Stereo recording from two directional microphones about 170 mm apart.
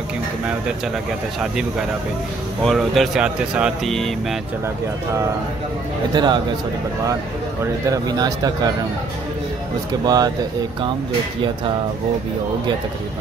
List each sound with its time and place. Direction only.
1.4 s speech: 5° right (ahead or behind)
6.1 s speech: 25° right (ahead or behind)
7.9 s speech: 20° right (ahead or behind)
10.0 s speech: 25° right (ahead or behind)